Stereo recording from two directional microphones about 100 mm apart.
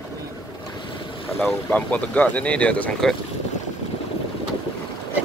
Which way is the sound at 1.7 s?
15° left (ahead or behind).